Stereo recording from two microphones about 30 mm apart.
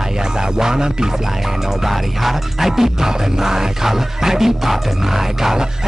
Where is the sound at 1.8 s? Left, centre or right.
Centre.